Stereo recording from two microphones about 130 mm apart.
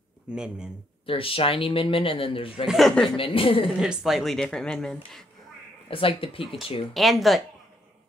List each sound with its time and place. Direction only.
0.3 s speech: 5° right (ahead or behind)
1.0 s speech: 45° left (ahead or behind)
2.6 s speech: centre (ahead or behind)
3.2 s speech: 45° left (ahead or behind)
3.8 s speech: 5° right (ahead or behind)
5.9 s speech: 45° left (ahead or behind)
6.9 s speech: centre (ahead or behind)